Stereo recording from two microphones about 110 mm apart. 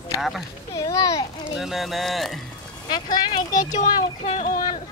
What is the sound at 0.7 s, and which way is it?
Speech, 30° left (ahead or behind).